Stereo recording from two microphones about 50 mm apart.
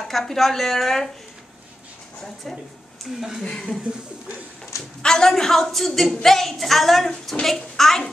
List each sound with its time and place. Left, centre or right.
0.1 s a woman's voice: centre
2.2 s a woman's voice: centre
3.4 s a woman's voice: centre
5.0 s a woman's voice: centre